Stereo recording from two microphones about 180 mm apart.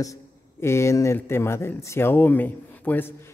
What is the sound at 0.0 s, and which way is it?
Speech, 15° left (ahead or behind).